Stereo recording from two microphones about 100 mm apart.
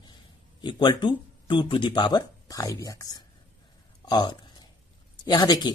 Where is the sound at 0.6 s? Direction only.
50° left (ahead or behind).